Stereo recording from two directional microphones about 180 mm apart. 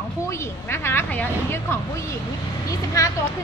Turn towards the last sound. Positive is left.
turn(degrees=20)  # may be behind; listen again after turning